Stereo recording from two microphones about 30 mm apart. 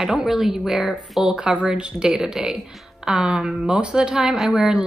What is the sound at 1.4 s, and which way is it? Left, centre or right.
Music, right.